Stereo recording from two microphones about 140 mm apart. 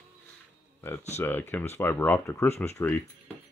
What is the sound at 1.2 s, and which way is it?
Speech, 15° left (ahead or behind).